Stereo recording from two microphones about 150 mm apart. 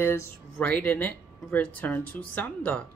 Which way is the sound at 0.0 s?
15° left (ahead or behind).